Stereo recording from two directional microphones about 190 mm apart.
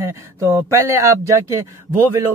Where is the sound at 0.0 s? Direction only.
15° right (ahead or behind).